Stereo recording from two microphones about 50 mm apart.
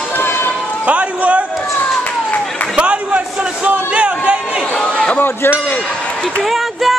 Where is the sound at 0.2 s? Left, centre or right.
Left.